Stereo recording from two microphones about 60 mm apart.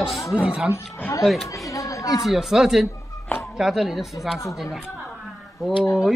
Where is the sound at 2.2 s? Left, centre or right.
Centre.